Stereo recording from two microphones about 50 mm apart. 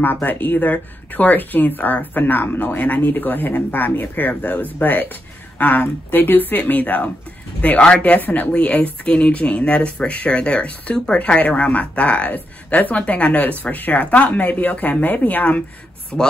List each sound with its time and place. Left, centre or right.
0.0 s speech: left
16.1 s speech: left